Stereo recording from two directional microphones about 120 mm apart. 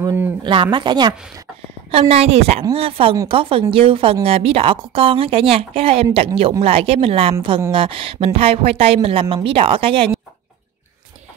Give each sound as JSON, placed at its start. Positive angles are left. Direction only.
{"t": 0.0, "sound": "a sound", "side_deg": -20}
{"t": 0.4, "sound": "speech", "side_deg": -40}
{"t": 1.9, "sound": "a woman's voice", "side_deg": -55}